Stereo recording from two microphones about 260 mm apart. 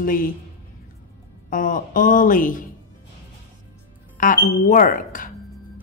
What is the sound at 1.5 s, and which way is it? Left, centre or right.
Speech, left.